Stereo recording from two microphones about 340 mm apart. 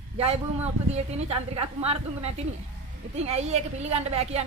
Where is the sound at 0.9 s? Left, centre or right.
Centre.